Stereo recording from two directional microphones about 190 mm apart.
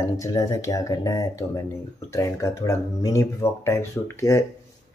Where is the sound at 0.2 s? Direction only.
15° left (ahead or behind).